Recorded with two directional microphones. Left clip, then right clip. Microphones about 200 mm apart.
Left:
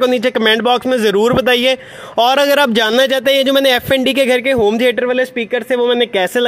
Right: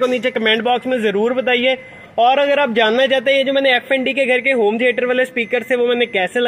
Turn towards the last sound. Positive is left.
turn(degrees=35)  # may be behind; listen again after turning